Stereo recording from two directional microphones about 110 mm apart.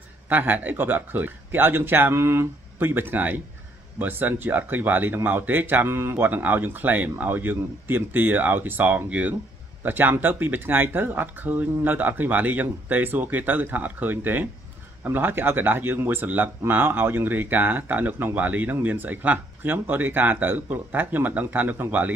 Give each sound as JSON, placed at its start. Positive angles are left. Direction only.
{"t": 0.3, "sound": "speech", "side_deg": -15}